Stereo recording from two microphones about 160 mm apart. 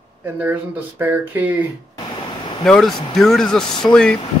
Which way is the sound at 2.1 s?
30° left (ahead or behind).